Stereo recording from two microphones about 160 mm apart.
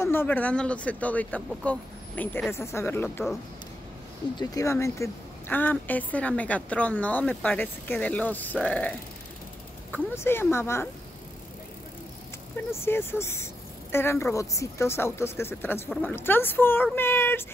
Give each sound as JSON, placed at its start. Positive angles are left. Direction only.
{"t": 0.0, "sound": "a woman's voice", "side_deg": 15}
{"t": 4.4, "sound": "a woman's voice", "side_deg": 20}
{"t": 12.8, "sound": "a woman's voice", "side_deg": 15}